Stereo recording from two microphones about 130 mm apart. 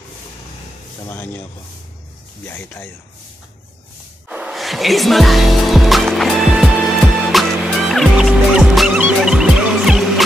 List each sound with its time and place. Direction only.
1.0 s speech: 15° left (ahead or behind)
2.4 s speech: 15° left (ahead or behind)
4.3 s music: 5° right (ahead or behind)